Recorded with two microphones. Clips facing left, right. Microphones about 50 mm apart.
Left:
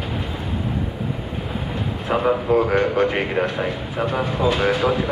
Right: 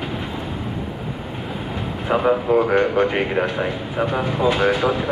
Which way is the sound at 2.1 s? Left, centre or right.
Centre.